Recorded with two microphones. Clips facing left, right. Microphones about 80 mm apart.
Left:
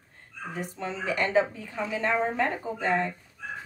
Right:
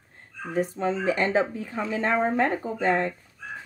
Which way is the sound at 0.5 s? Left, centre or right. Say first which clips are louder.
Right 9 dB; right.